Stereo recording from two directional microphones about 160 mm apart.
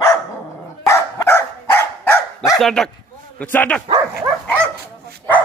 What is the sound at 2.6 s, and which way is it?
Dog, 5° left (ahead or behind).